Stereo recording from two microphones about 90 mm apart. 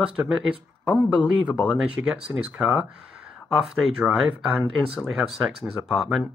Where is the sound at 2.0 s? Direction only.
20° right (ahead or behind).